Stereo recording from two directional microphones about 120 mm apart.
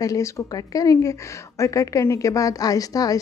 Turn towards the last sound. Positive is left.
turn(degrees=30)  # may be behind; listen again after turning